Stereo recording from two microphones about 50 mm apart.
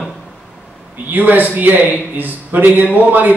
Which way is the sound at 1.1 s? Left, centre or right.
Right.